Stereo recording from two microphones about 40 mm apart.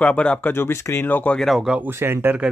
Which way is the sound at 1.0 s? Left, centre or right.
Left.